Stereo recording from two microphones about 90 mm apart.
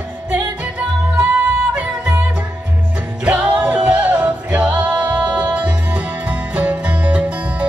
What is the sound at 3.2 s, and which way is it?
Music, 15° right (ahead or behind).